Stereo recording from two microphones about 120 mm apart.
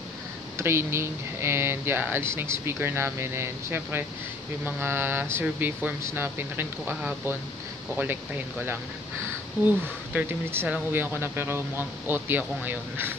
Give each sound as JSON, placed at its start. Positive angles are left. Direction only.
{"t": 0.6, "sound": "speech", "side_deg": -20}